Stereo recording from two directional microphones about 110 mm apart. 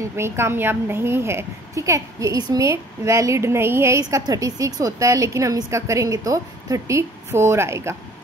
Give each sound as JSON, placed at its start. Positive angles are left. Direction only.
{"t": 0.0, "sound": "a woman's voice", "side_deg": -25}